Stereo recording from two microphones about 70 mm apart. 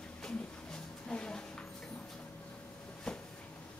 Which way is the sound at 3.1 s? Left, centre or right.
Centre.